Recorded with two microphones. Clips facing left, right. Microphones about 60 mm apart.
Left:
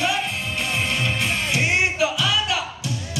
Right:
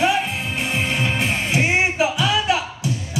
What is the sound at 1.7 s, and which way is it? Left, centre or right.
Music, right.